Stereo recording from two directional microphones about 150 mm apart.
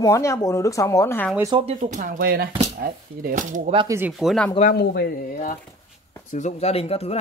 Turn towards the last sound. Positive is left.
turn(degrees=40)  # may be behind; listen again after turning